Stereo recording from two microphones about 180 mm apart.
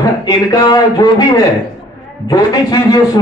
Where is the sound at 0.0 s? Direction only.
20° left (ahead or behind).